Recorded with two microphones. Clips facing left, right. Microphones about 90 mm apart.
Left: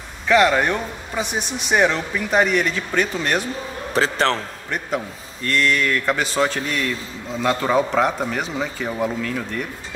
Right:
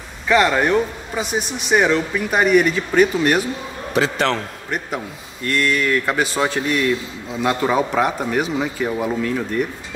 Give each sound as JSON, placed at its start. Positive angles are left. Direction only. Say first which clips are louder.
{"t": 0.3, "sound": "a man's voice", "louder": "right 1 dB", "side_deg": 0}
{"t": 3.9, "sound": "a man's voice", "louder": "right 1 dB", "side_deg": 35}
{"t": 4.6, "sound": "a man's voice", "louder": "left 1 dB", "side_deg": -10}